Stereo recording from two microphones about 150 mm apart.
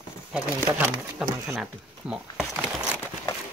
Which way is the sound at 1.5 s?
5° right (ahead or behind).